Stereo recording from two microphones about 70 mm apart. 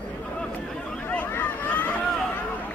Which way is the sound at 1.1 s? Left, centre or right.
Left.